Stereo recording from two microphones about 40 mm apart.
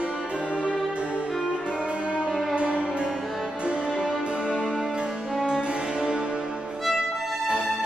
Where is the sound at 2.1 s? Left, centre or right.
Right.